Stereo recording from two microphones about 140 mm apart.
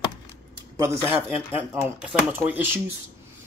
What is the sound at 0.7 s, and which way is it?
Speech, 20° right (ahead or behind).